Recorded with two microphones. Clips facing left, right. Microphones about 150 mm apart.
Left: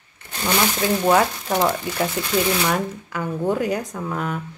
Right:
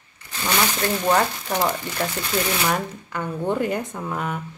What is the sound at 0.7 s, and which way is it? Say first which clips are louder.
Speech: left 4 dB; 5° left (ahead or behind).